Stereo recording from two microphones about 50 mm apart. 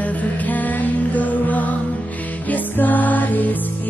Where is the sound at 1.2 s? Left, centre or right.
Left.